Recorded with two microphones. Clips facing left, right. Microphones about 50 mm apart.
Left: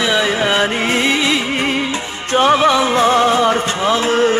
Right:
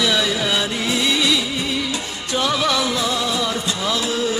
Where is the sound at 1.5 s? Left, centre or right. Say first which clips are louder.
Left 5 dB; left.